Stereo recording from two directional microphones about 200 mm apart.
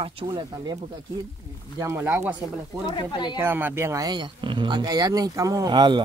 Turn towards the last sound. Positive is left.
turn(degrees=-20)  # may be behind; listen again after turning